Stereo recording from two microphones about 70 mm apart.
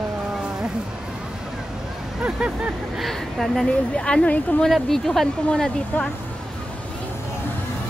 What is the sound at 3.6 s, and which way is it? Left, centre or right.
Speech, centre.